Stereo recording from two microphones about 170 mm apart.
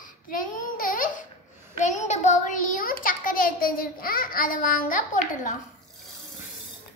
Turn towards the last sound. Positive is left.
turn(degrees=50)  # may be behind; listen again after turning